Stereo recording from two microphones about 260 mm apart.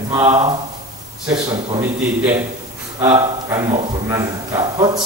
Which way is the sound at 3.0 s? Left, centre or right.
Centre.